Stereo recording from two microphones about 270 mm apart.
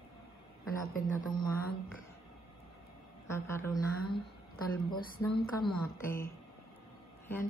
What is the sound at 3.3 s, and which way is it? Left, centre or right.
Speech, centre.